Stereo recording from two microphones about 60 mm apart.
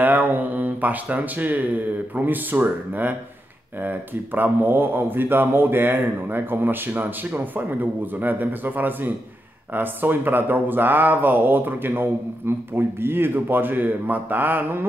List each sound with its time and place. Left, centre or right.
0.0 s mantra: right
1.1 s speech: right